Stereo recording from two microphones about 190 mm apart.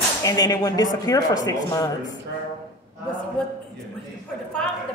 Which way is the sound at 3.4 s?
5° left (ahead or behind).